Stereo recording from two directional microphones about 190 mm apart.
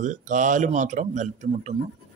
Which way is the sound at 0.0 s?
40° right (ahead or behind).